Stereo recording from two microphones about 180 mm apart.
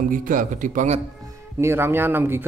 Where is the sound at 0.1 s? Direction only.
50° right (ahead or behind).